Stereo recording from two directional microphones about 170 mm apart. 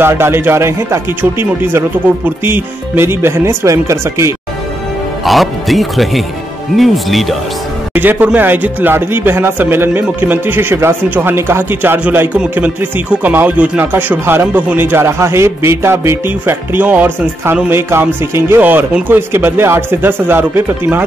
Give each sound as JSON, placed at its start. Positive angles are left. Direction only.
{"t": 0.0, "sound": "speech", "side_deg": -15}
{"t": 5.2, "sound": "speech", "side_deg": 0}
{"t": 7.9, "sound": "speech", "side_deg": -10}